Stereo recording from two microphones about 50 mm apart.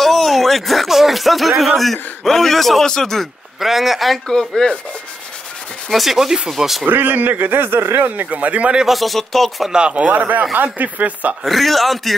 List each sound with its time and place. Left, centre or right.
0.0 s a man's voice: centre
3.5 s a man's voice: centre
4.3 s speech: centre
5.9 s speech: centre
6.9 s a man's voice: right
8.8 s a man's voice: centre
9.7 s a man's voice: centre
11.4 s a man's voice: centre